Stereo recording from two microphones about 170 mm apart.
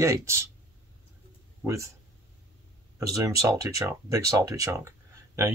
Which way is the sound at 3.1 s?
20° right (ahead or behind).